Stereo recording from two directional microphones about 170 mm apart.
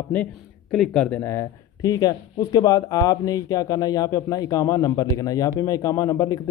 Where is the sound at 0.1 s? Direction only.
5° left (ahead or behind).